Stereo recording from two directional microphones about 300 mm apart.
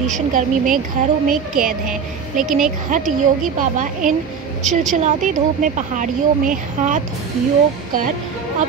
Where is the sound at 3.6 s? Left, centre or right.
Right.